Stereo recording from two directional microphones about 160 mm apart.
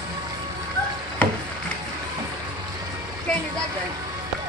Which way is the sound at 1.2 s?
10° left (ahead or behind).